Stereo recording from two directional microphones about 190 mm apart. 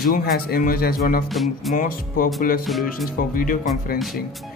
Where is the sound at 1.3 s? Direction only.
Centre (ahead or behind).